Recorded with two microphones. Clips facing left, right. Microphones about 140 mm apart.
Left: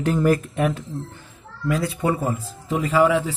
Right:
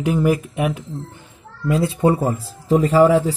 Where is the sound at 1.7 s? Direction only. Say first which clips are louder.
Right 5 dB; 25° right (ahead or behind).